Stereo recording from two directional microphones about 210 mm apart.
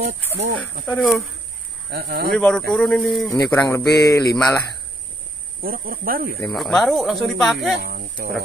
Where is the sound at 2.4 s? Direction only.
5° left (ahead or behind).